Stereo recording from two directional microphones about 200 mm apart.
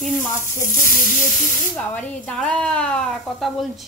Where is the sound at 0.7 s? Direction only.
45° left (ahead or behind).